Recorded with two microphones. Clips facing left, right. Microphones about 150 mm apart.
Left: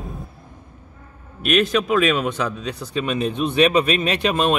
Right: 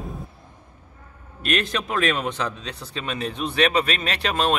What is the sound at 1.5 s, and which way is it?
Speech, 10° left (ahead or behind).